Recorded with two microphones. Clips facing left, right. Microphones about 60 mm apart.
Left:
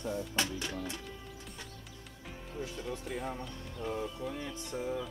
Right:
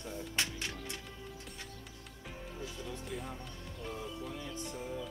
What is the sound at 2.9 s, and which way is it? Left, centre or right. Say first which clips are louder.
Speech: left 5 dB; left.